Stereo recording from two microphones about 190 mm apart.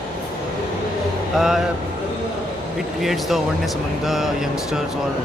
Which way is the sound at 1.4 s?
Centre (ahead or behind).